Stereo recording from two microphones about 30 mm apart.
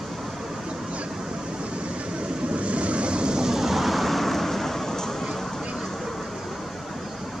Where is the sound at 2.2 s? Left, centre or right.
Right.